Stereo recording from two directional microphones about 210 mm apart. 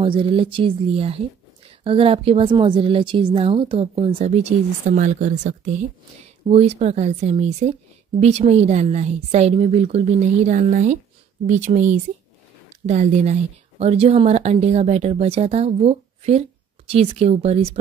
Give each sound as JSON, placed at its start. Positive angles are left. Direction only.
{"t": 0.0, "sound": "a woman's voice", "side_deg": -25}